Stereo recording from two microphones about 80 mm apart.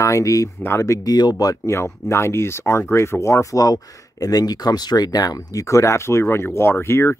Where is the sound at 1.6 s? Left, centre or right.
Left.